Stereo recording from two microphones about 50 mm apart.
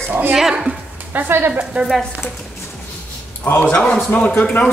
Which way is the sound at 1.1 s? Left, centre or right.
Right.